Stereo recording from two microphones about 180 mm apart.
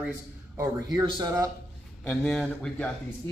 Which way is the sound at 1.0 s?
20° right (ahead or behind).